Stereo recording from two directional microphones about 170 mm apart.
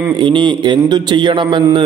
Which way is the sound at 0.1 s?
30° right (ahead or behind).